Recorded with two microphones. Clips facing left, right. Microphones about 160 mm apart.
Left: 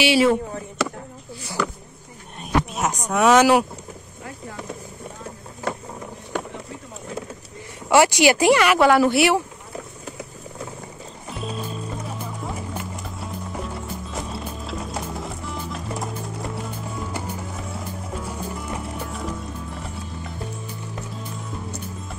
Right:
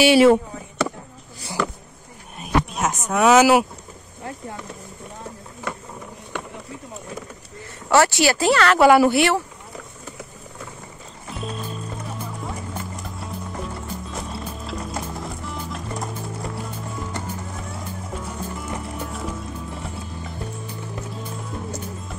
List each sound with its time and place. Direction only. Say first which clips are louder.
0.0 s speech: right 4 dB; 50° right (ahead or behind)
2.4 s speech: right 1 dB; centre (ahead or behind)
7.9 s speech: left 1 dB; 15° left (ahead or behind)
8.7 s a woman's voice: right 2 dB; 10° right (ahead or behind)
9.1 s speech: left 1 dB; 10° left (ahead or behind)
11.2 s music: even; centre (ahead or behind)